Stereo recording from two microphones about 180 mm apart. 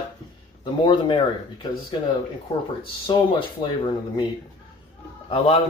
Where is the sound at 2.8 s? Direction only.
25° left (ahead or behind).